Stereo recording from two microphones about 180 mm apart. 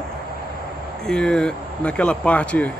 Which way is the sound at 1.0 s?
5° left (ahead or behind).